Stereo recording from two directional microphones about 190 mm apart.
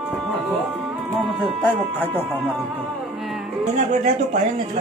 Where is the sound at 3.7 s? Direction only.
35° right (ahead or behind).